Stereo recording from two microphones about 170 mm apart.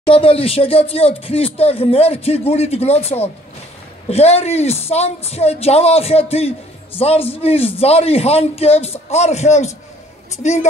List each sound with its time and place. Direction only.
0.0 s a woman's voice: 35° left (ahead or behind)